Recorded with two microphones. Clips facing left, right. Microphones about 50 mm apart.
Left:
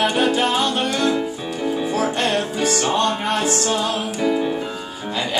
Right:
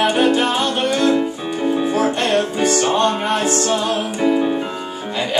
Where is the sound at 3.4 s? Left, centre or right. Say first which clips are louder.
Right 2 dB; centre.